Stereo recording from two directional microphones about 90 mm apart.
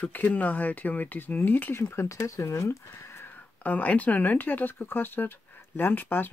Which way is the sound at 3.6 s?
20° left (ahead or behind).